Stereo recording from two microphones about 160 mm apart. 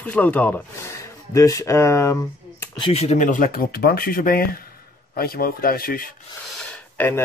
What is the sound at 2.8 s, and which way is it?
Speech, 45° left (ahead or behind).